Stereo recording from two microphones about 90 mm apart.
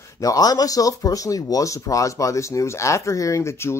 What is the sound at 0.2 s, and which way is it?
Speech, 40° left (ahead or behind).